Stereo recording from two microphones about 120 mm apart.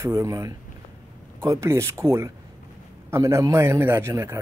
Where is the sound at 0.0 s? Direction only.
25° right (ahead or behind).